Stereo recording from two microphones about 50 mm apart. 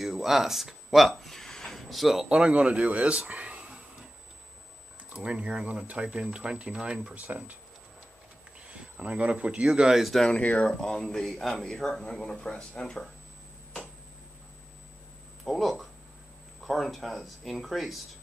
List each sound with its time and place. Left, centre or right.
0.0 s a sound: centre
1.9 s speech: centre
2.2 s speech: right
5.1 s speech: right
8.6 s speech: right
9.9 s speech: centre
10.4 s speech: left
10.8 s speech: centre
15.4 s speech: centre